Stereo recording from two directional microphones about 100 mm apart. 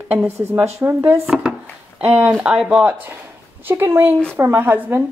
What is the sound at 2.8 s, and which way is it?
A woman's voice, 15° right (ahead or behind).